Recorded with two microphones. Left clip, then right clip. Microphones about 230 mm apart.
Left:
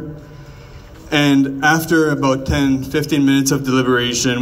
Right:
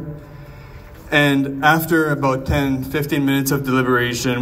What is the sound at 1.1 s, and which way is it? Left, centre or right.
A man's voice, left.